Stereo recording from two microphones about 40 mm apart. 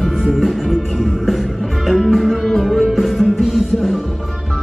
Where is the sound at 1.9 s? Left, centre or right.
Centre.